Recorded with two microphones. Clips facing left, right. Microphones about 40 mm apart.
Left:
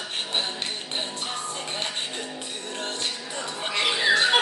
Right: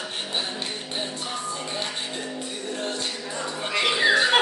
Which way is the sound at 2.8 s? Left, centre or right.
Left.